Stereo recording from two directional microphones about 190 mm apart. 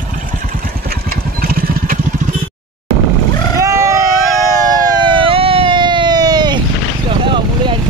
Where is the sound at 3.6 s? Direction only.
15° right (ahead or behind).